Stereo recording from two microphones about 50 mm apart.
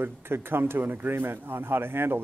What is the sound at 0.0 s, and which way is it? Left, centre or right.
Speech, right.